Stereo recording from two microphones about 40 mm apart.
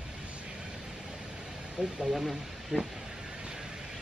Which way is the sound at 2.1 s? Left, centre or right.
Centre.